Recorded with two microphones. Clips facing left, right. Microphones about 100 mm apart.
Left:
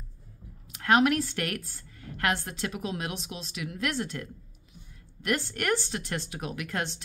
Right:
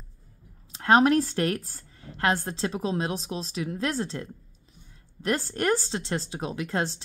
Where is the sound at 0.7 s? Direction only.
30° right (ahead or behind).